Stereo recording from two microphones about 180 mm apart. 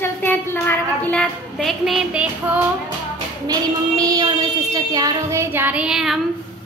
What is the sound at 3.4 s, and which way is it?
A woman's voice, 20° right (ahead or behind).